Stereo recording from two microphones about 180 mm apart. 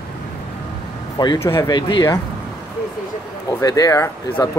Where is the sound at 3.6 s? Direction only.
20° left (ahead or behind).